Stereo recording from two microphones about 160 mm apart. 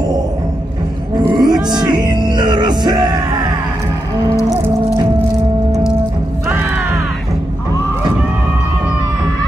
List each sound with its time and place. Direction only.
1.3 s music: 25° right (ahead or behind)